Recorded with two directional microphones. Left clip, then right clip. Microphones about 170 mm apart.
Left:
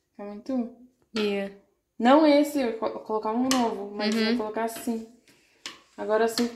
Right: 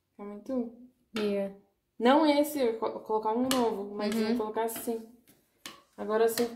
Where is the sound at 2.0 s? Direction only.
30° left (ahead or behind).